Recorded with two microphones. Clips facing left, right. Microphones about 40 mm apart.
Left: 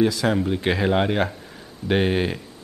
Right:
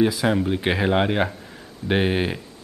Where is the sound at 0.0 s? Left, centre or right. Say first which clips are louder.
Even; centre.